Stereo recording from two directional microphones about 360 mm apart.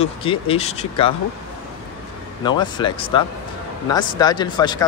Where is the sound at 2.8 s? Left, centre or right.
Centre.